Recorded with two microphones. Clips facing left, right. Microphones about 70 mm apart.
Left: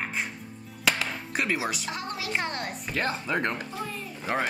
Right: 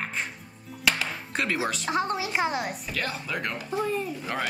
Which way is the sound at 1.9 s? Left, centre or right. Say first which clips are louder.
Right 7 dB; right.